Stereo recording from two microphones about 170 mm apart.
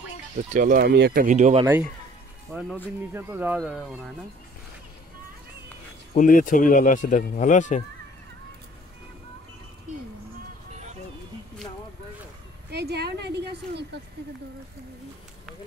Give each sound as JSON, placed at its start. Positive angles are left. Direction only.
{"t": 0.5, "sound": "speech", "side_deg": -50}
{"t": 1.2, "sound": "speech", "side_deg": -45}
{"t": 2.5, "sound": "speech", "side_deg": -10}
{"t": 6.1, "sound": "speech", "side_deg": 50}
{"t": 12.6, "sound": "a woman's voice", "side_deg": -75}